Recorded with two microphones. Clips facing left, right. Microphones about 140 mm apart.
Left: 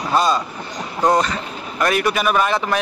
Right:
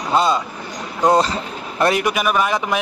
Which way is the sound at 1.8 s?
20° right (ahead or behind).